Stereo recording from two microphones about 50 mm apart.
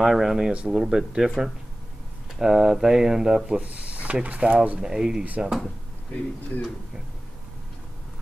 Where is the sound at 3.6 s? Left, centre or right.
Right.